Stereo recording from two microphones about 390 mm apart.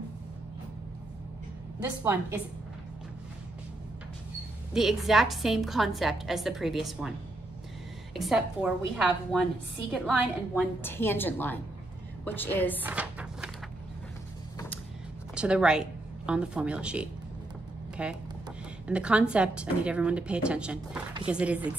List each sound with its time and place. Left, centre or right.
1.8 s a woman's voice: centre
4.7 s a woman's voice: centre
8.1 s a woman's voice: centre
15.3 s a woman's voice: centre